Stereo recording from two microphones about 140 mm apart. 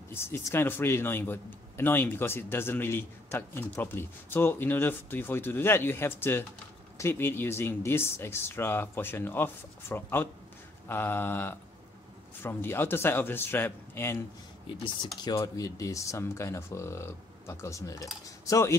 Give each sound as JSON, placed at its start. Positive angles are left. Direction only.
{"t": 0.1, "sound": "speech", "side_deg": 15}
{"t": 15.1, "sound": "speech", "side_deg": 30}